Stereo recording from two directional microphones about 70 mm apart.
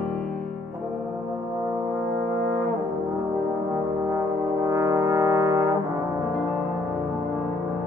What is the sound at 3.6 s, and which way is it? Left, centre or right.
Brass instrument, right.